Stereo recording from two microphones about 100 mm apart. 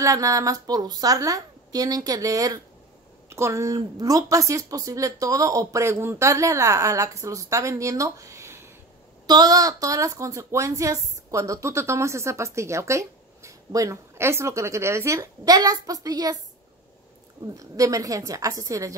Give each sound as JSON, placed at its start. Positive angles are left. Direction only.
{"t": 0.0, "sound": "speech", "side_deg": -35}
{"t": 9.3, "sound": "speech", "side_deg": -40}
{"t": 17.6, "sound": "speech", "side_deg": -35}